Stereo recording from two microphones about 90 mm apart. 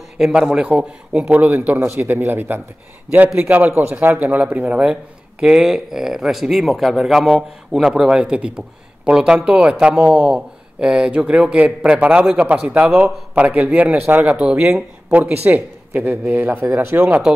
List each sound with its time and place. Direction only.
0.2 s speech: 10° right (ahead or behind)
1.8 s speech: 30° right (ahead or behind); by 12.9 s 10° right (ahead or behind)
13.3 s speech: 20° right (ahead or behind)
14.4 s speech: 10° right (ahead or behind)